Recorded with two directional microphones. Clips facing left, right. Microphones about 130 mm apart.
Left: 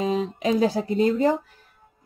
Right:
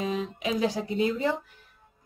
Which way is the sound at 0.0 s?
40° left (ahead or behind).